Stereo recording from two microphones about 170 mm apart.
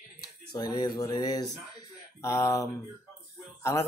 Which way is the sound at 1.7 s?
15° left (ahead or behind).